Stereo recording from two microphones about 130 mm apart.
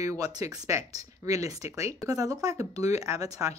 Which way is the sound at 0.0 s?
25° right (ahead or behind).